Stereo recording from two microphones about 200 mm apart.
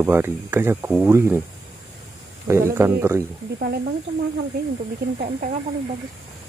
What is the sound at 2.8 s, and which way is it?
Speech, 10° right (ahead or behind).